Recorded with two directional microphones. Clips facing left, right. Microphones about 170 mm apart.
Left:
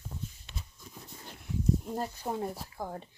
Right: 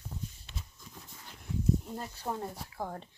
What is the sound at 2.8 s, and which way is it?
Speech, 5° left (ahead or behind).